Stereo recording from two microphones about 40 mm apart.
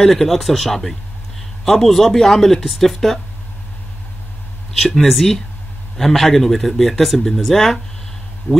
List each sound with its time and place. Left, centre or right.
0.0 s speech: centre
4.7 s speech: centre
8.5 s speech: left